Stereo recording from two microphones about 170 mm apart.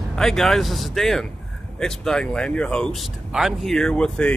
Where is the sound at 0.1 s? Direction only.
5° left (ahead or behind).